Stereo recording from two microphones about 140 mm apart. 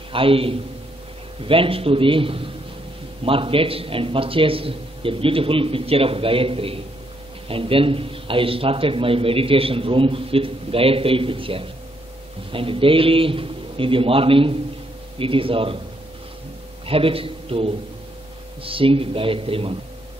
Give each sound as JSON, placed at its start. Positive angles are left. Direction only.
{"t": 0.1, "sound": "a man's voice", "side_deg": -40}
{"t": 16.8, "sound": "a man's voice", "side_deg": -40}